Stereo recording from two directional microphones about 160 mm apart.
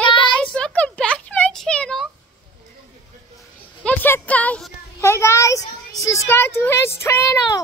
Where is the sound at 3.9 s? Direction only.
10° left (ahead or behind).